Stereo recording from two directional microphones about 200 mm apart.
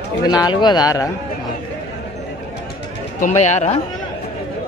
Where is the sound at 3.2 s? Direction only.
35° left (ahead or behind).